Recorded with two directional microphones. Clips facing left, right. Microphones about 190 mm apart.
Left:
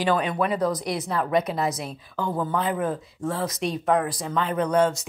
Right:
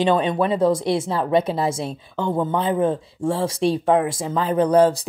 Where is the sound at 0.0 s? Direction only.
25° right (ahead or behind).